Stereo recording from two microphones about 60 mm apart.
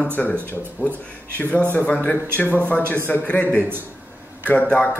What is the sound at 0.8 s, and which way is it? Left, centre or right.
Speech, left.